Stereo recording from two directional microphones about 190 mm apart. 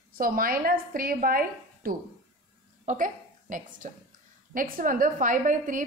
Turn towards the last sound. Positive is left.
turn(degrees=-45)  # may be behind; listen again after turning